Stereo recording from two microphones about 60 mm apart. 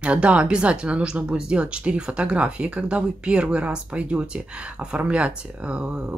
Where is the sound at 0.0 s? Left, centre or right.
Right.